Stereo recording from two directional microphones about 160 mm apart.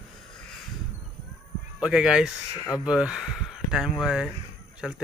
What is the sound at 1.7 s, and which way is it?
Speech, 5° right (ahead or behind).